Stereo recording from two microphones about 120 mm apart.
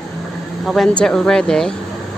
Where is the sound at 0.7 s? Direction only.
5° left (ahead or behind).